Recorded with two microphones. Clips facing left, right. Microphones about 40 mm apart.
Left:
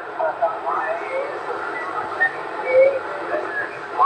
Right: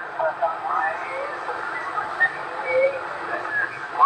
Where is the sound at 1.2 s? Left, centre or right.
Centre.